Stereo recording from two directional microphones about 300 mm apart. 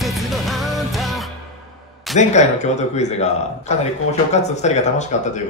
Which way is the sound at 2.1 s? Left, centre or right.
Left.